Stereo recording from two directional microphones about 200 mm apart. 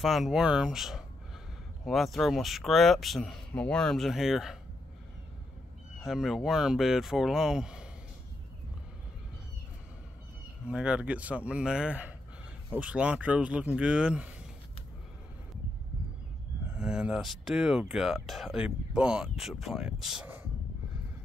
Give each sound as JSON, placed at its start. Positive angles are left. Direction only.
{"t": 0.0, "sound": "speech", "side_deg": 0}
{"t": 6.0, "sound": "speech", "side_deg": 0}
{"t": 10.7, "sound": "speech", "side_deg": -5}
{"t": 16.7, "sound": "speech", "side_deg": -5}